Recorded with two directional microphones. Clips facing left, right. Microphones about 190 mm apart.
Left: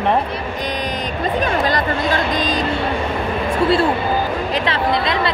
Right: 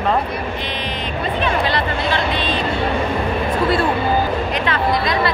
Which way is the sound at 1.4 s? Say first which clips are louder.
Left 1 dB; 45° left (ahead or behind).